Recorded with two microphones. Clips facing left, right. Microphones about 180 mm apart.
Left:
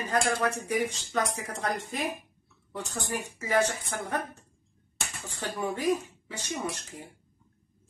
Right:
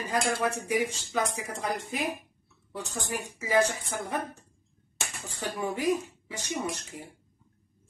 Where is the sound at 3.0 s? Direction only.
15° right (ahead or behind).